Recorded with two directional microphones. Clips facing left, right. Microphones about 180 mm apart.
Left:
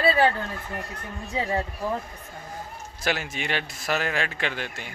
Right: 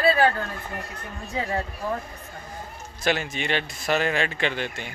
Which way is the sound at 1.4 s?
20° left (ahead or behind).